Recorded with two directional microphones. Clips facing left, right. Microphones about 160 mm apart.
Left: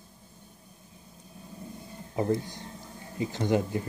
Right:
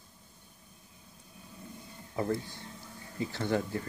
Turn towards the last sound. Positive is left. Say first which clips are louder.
# left 4 dB
turn(degrees=20)  # may be behind; listen again after turning